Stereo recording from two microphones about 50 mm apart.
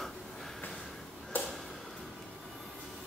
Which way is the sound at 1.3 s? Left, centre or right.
Left.